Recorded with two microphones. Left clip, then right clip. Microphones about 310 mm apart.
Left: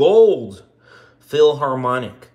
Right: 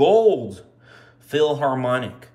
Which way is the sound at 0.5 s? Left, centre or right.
Centre.